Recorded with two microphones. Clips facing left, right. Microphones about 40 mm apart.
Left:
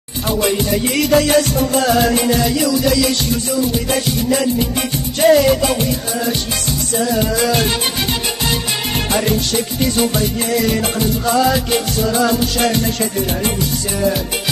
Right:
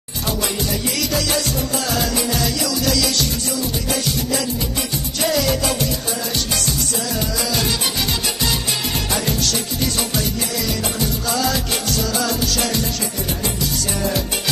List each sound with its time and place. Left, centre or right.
0.4 s music: left
3.9 s music: left
7.0 s music: left
9.1 s music: left